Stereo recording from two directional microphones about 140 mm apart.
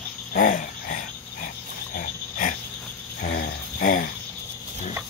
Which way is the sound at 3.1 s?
85° left.